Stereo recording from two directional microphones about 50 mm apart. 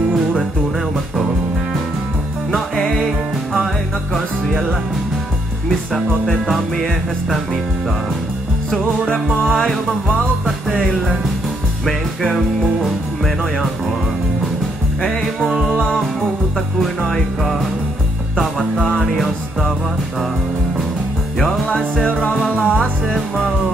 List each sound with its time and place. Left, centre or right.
5.7 s music: centre
9.1 s music: centre
11.8 s music: centre
15.0 s music: centre
16.8 s music: centre
21.6 s music: centre